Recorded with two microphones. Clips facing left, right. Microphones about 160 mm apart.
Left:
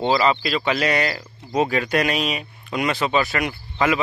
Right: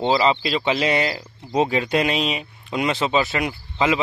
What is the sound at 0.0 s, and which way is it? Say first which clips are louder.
Speech: even; 25° right (ahead or behind).